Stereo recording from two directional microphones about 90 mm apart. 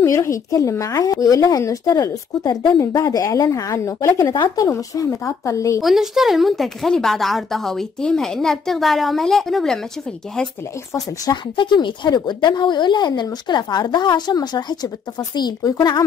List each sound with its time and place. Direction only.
0.0 s speech: 35° left (ahead or behind)
4.3 s a woman's voice: 55° left (ahead or behind)
4.6 s speech: 40° left (ahead or behind)
5.8 s a woman's voice: centre (ahead or behind)
11.5 s a woman's voice: 60° left (ahead or behind)